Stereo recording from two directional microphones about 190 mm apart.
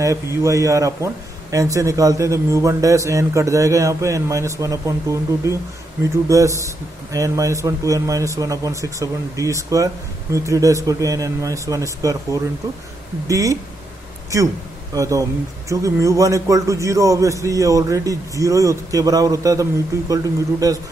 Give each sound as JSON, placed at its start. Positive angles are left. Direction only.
{"t": 0.0, "sound": "a man's voice", "side_deg": -15}